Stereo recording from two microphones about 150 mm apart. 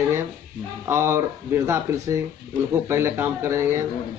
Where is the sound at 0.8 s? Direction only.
15° right (ahead or behind).